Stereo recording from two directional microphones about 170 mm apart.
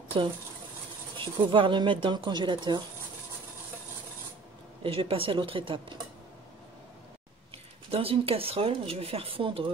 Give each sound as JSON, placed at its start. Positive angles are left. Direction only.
{"t": 1.1, "sound": "speech", "side_deg": -30}
{"t": 4.8, "sound": "speech", "side_deg": -35}
{"t": 7.9, "sound": "speech", "side_deg": -35}